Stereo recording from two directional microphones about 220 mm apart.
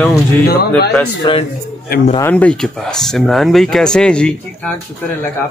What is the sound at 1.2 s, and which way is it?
Speech, 25° left (ahead or behind).